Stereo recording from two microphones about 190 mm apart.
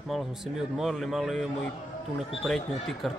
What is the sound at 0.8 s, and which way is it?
Speech, centre (ahead or behind).